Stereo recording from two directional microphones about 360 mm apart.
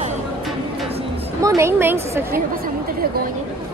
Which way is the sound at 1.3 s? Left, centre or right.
Centre.